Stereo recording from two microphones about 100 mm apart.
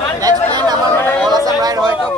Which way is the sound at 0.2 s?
40° right (ahead or behind).